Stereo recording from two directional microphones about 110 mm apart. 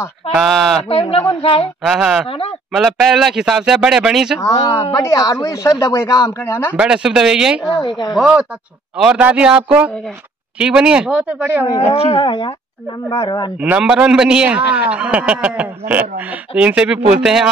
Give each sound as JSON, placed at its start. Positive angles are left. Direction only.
{"t": 0.3, "sound": "speech", "side_deg": 0}
{"t": 0.8, "sound": "a man's voice", "side_deg": 60}
{"t": 1.8, "sound": "speech", "side_deg": -5}
{"t": 5.0, "sound": "speech", "side_deg": 30}
{"t": 6.4, "sound": "speech", "side_deg": 20}
{"t": 6.8, "sound": "a man's voice", "side_deg": -5}
{"t": 7.7, "sound": "speech", "side_deg": 40}
{"t": 8.1, "sound": "a man's voice", "side_deg": -5}
{"t": 11.9, "sound": "speech", "side_deg": 55}
{"t": 13.6, "sound": "a man's voice", "side_deg": -10}